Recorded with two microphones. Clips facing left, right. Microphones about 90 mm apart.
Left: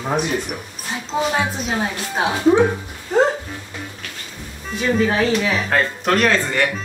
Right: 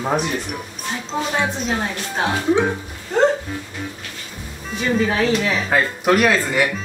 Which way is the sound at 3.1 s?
5° left (ahead or behind).